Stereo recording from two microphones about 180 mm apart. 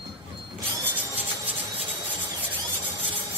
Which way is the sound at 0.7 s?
10° right (ahead or behind).